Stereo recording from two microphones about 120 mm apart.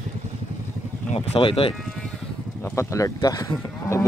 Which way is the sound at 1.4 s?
50° left (ahead or behind).